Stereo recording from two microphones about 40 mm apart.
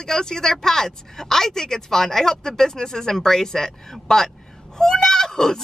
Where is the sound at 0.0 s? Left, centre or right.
Centre.